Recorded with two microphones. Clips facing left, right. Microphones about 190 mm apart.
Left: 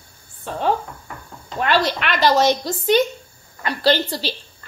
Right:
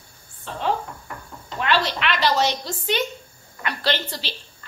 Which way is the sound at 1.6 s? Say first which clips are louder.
Left 3 dB; 45° left (ahead or behind).